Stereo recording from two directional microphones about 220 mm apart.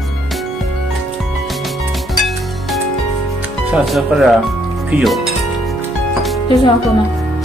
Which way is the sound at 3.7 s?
Centre (ahead or behind).